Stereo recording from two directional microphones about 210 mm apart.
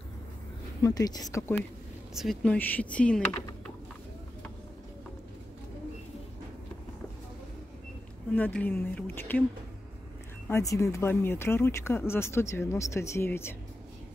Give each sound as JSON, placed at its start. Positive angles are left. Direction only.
{"t": 0.8, "sound": "speech", "side_deg": 15}
{"t": 2.1, "sound": "speech", "side_deg": 0}
{"t": 8.4, "sound": "speech", "side_deg": 5}
{"t": 10.5, "sound": "speech", "side_deg": 15}